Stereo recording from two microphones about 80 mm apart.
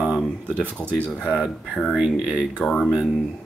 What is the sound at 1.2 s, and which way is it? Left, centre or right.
Speech, centre.